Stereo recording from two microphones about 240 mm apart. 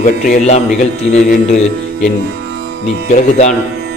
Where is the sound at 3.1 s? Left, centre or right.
Left.